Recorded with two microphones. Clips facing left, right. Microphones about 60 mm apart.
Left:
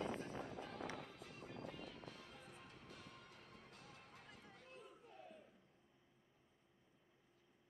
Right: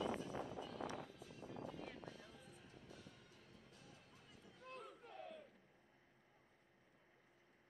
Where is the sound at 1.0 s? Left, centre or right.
Left.